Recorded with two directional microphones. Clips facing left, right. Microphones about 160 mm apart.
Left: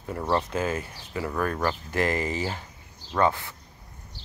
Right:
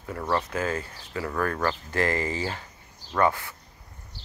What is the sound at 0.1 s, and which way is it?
Speech, 20° left (ahead or behind).